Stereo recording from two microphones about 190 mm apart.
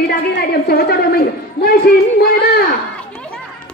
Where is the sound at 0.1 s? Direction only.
55° left (ahead or behind).